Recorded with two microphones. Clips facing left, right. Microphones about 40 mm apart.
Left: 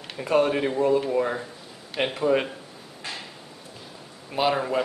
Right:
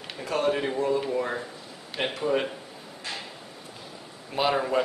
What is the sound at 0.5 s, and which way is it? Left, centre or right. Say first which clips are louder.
Speech: left 1 dB; centre.